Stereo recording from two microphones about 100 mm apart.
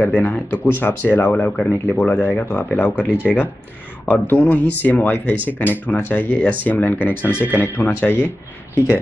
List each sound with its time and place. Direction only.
0.0 s speech: 15° left (ahead or behind)